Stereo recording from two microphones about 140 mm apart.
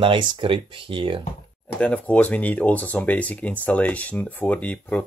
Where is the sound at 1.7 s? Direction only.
10° left (ahead or behind).